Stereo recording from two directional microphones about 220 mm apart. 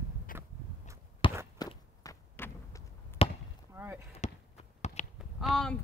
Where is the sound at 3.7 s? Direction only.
10° right (ahead or behind).